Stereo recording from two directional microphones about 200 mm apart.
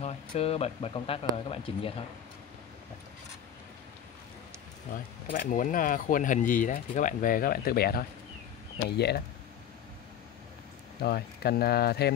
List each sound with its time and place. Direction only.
0.0 s speech: 30° left (ahead or behind)
4.9 s speech: 40° left (ahead or behind)
11.0 s speech: 50° left (ahead or behind)